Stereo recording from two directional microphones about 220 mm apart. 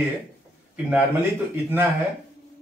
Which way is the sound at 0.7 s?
10° right (ahead or behind).